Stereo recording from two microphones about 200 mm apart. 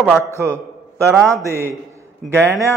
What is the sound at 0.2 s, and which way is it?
A man's voice, 15° right (ahead or behind).